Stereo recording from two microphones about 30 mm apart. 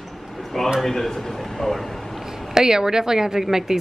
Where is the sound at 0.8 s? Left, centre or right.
Centre.